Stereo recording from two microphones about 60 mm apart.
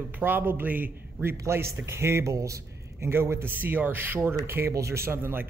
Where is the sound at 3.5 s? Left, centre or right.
Right.